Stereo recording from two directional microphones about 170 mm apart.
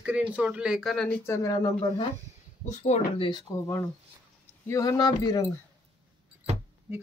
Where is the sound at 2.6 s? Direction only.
45° left (ahead or behind).